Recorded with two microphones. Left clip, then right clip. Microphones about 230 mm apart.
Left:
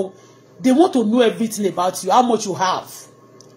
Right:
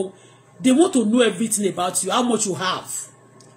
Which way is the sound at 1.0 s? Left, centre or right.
Centre.